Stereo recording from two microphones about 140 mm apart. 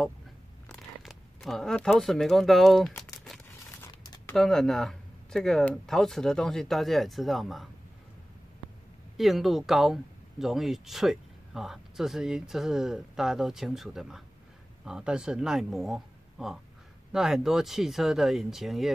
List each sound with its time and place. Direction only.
0.7 s speech: centre (ahead or behind)
3.7 s a sound: 20° left (ahead or behind)
4.4 s speech: centre (ahead or behind)
9.1 s speech: centre (ahead or behind)